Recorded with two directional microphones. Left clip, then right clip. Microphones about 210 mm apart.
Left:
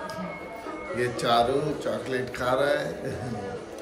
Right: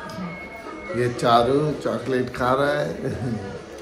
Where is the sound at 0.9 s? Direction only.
10° right (ahead or behind).